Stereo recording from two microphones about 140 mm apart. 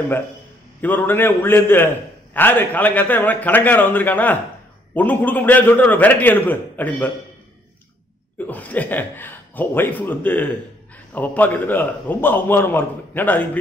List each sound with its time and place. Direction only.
0.7 s a man's voice: 15° left (ahead or behind)
8.5 s a man's voice: 10° left (ahead or behind)